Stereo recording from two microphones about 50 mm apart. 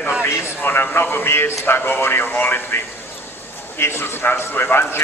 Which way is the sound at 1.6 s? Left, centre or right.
Left.